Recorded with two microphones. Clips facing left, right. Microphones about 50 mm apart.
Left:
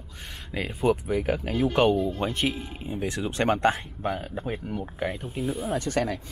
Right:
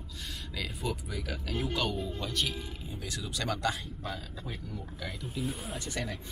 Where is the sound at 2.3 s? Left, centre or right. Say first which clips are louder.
Left 6 dB; left.